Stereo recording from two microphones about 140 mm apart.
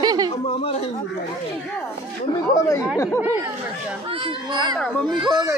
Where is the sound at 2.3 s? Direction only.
25° left (ahead or behind).